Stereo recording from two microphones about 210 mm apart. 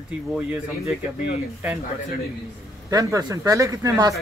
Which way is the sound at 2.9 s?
15° right (ahead or behind).